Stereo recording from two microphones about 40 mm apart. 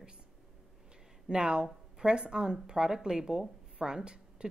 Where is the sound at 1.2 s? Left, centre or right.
Right.